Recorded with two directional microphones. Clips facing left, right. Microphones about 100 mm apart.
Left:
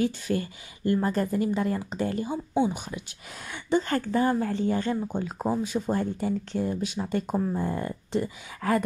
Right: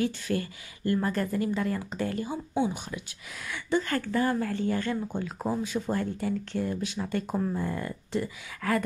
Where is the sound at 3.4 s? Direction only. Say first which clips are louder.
Left 2 dB; 30° left (ahead or behind).